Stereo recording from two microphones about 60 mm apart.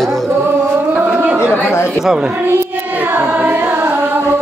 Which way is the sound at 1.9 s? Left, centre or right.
Centre.